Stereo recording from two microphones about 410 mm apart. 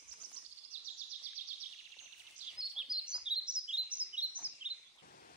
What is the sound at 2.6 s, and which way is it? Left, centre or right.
Chirp, centre.